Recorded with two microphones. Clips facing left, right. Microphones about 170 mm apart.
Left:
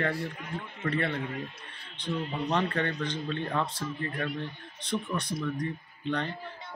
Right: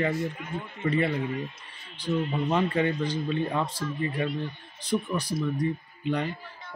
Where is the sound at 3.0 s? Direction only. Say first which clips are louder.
Right 5 dB; 10° right (ahead or behind).